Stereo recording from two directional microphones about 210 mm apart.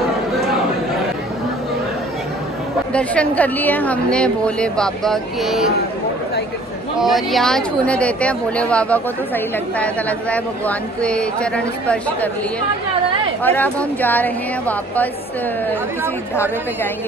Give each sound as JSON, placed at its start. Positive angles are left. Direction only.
{"t": 2.9, "sound": "a woman's voice", "side_deg": 5}
{"t": 7.0, "sound": "a woman's voice", "side_deg": 0}
{"t": 13.4, "sound": "a woman's voice", "side_deg": 10}